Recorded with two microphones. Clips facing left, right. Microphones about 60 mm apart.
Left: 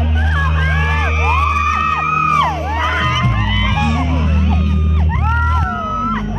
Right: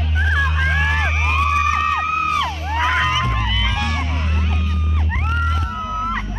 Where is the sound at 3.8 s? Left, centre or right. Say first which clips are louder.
Left 6 dB; left.